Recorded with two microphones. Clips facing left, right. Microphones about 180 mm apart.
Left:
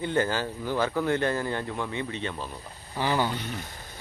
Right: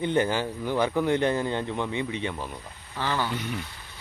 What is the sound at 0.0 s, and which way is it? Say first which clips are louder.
Speech: right 2 dB; 20° right (ahead or behind).